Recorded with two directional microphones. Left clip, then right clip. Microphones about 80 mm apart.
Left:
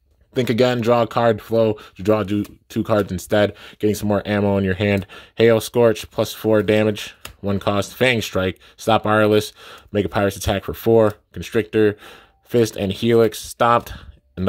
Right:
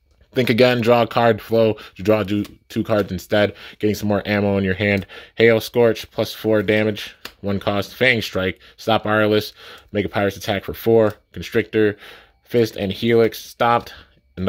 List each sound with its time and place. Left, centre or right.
0.3 s speech: centre
2.0 s speech: left
2.8 s speech: left
7.4 s speech: left